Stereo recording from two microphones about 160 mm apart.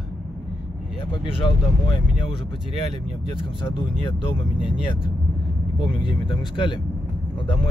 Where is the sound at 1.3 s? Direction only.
30° left (ahead or behind).